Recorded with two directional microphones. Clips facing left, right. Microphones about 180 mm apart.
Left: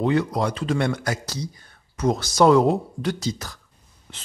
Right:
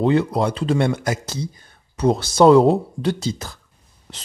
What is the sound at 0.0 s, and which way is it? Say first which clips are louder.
Speech: right 4 dB; 25° right (ahead or behind).